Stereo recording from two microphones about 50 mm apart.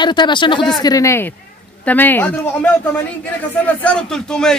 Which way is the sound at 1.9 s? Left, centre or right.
Left.